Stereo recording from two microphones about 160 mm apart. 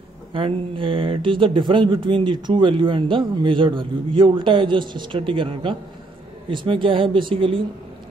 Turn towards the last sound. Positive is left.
turn(degrees=-35)  # may be behind; listen again after turning